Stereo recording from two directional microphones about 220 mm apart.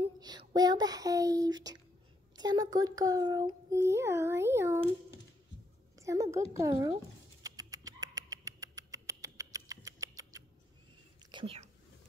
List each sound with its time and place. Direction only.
0.0 s a sound: 20° right (ahead or behind)
2.3 s a child's voice: 20° right (ahead or behind)
5.9 s a woman's voice: 15° right (ahead or behind)
7.4 s rodents: 15° right (ahead or behind)
11.3 s whispering: 25° right (ahead or behind)